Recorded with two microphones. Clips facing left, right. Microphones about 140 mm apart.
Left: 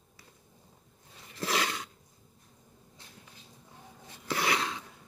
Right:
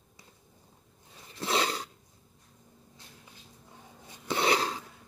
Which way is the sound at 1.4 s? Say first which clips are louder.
Right 2 dB; 30° right (ahead or behind).